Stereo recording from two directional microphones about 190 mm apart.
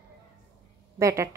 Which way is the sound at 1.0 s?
15° right (ahead or behind).